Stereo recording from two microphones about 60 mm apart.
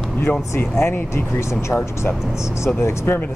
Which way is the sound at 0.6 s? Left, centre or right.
Left.